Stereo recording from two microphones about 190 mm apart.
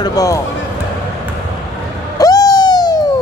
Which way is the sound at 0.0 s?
20° left (ahead or behind).